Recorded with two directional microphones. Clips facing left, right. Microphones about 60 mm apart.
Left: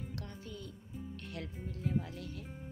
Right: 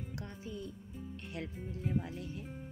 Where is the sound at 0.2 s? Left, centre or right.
Centre.